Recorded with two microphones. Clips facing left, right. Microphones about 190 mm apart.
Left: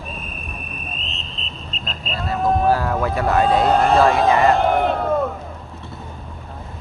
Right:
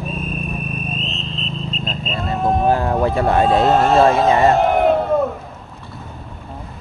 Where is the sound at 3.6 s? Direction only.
Centre (ahead or behind).